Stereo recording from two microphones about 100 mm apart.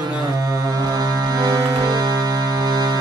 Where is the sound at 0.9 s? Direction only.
40° right (ahead or behind).